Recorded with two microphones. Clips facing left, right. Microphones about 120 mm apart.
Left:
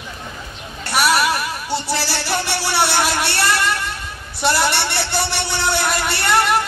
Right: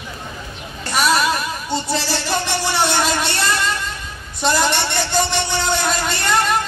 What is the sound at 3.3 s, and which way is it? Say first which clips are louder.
Music: left 1 dB; 10° left (ahead or behind).